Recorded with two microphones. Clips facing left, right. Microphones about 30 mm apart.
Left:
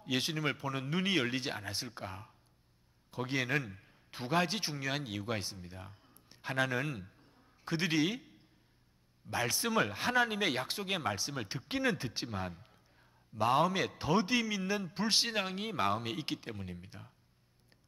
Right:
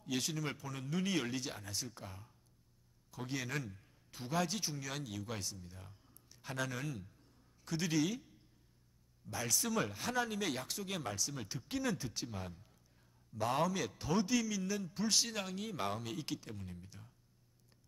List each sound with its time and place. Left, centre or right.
0.0 s a man's voice: left